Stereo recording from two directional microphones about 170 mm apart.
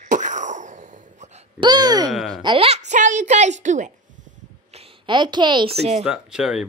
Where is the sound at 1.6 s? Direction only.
25° right (ahead or behind).